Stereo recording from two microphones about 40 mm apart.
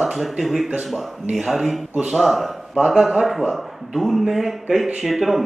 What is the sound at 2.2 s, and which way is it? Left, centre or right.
A man's voice, centre.